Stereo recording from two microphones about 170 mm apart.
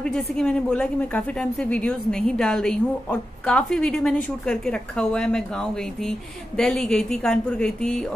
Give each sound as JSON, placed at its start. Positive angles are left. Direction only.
{"t": 0.0, "sound": "speech", "side_deg": 5}